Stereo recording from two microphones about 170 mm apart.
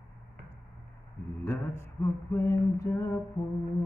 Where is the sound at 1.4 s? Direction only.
15° left (ahead or behind).